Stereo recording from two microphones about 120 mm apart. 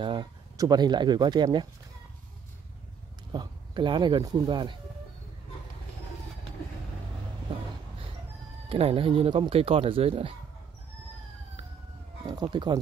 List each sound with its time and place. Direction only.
0.0 s speech: 40° right (ahead or behind)
3.3 s speech: 40° right (ahead or behind)
8.6 s speech: 50° right (ahead or behind)
12.3 s speech: 40° right (ahead or behind)